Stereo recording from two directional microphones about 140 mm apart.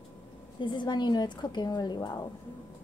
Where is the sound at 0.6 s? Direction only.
35° left (ahead or behind).